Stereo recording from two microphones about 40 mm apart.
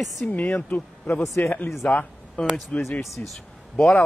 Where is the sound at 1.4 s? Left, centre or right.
Left.